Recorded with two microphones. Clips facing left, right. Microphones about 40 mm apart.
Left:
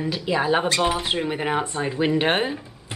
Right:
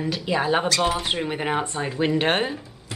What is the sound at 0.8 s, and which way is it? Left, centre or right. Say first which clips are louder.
Speech: left 1 dB; centre.